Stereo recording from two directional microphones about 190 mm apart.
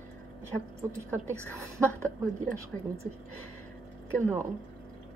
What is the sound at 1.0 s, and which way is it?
Speech, 15° right (ahead or behind).